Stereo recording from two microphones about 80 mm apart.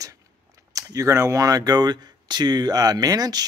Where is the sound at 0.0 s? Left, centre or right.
Right.